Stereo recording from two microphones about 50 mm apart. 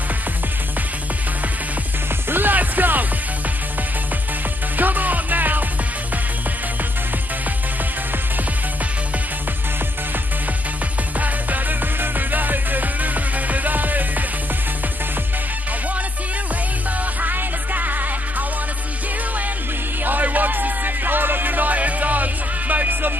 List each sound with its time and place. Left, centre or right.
2.2 s music: right
4.7 s music: right
11.1 s music: right
17.2 s music: right
20.1 s music: right